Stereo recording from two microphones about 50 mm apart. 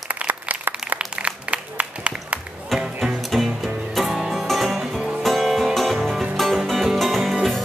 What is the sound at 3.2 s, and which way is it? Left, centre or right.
Music, centre.